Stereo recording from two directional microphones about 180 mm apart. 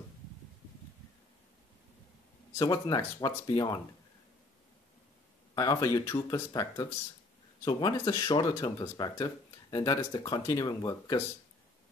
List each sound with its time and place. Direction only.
2.6 s speech: 20° left (ahead or behind)
5.5 s speech: 20° left (ahead or behind)